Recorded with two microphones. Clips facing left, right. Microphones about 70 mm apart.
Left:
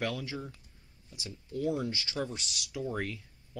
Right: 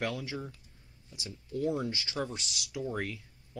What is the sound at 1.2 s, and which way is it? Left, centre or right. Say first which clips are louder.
Speech: right 1 dB; centre.